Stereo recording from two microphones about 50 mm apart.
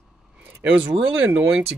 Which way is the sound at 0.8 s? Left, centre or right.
Right.